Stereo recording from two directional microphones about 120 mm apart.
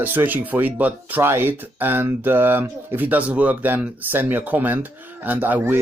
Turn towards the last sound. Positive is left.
turn(degrees=-15)  # may be behind; listen again after turning